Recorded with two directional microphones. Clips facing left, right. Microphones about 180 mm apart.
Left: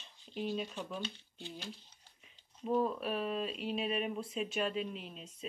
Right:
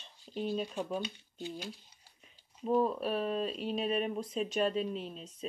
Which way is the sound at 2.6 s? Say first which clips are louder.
Right 3 dB; 35° right (ahead or behind).